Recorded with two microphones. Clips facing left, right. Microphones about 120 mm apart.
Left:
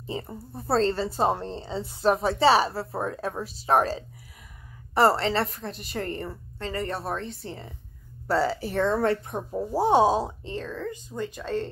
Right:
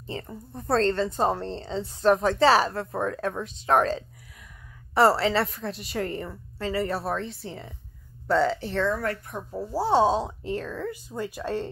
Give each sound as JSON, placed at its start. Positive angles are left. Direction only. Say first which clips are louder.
{"t": 0.0, "sound": "a woman's voice", "louder": "left 2 dB", "side_deg": 15}
{"t": 8.8, "sound": "speech", "louder": "left 6 dB", "side_deg": 25}
{"t": 10.4, "sound": "speech", "louder": "right 2 dB", "side_deg": -5}